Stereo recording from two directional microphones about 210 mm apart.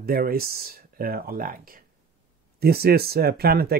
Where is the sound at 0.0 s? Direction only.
45° right (ahead or behind).